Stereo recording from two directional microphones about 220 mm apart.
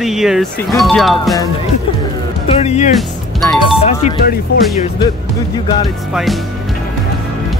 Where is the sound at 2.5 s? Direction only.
30° left (ahead or behind).